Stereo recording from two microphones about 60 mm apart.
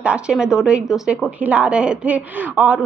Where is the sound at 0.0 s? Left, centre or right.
Centre.